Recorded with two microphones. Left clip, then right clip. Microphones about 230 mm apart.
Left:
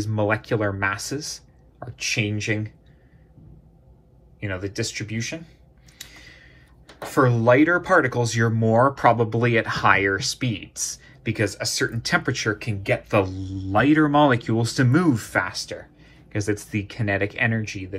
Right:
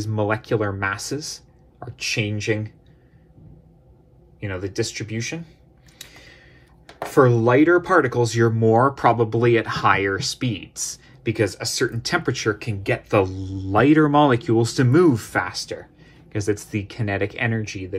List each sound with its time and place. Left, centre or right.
0.0 s speech: right
4.4 s speech: right
6.0 s a sound: right
7.2 s speech: right